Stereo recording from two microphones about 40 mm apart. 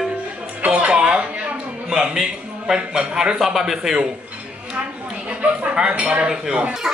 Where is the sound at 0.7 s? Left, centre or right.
Right.